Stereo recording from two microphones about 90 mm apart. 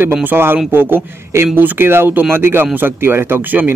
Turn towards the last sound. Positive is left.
turn(degrees=-20)  # may be behind; listen again after turning